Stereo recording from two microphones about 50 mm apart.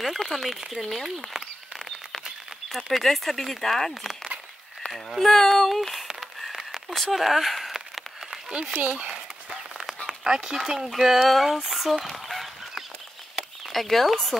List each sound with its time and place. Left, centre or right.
0.2 s speech: centre
2.7 s speech: centre
6.9 s a sound: centre
8.5 s speech: centre
8.7 s speech: right
10.0 s speech: centre